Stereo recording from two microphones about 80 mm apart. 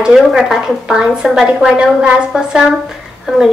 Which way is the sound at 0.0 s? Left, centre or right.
Centre.